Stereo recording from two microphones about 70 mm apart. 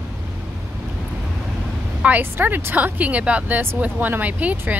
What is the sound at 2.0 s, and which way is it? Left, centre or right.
Speech, right.